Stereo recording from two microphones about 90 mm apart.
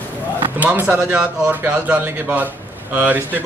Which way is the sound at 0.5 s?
20° right (ahead or behind).